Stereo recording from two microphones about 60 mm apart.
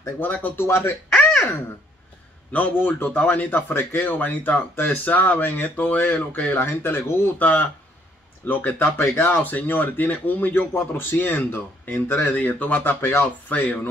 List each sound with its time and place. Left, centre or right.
0.2 s speech: left
0.7 s speech: left
2.5 s speech: left
6.6 s speech: left
7.3 s speech: left
8.9 s speech: left
9.3 s speech: left
10.7 s speech: left